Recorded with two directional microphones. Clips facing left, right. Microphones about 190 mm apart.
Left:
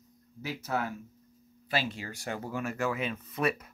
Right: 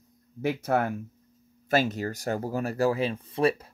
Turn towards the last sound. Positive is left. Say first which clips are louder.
# right 6 dB
turn(degrees=-30)  # may be behind; listen again after turning